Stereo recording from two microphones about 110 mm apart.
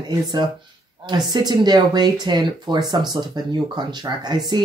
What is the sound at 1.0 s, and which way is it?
Speech, 40° right (ahead or behind).